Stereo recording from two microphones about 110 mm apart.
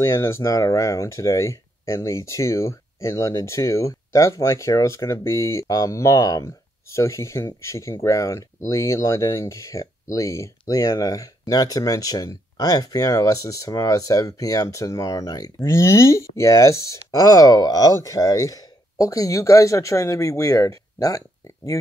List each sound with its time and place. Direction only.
0.0 s speech: 25° left (ahead or behind)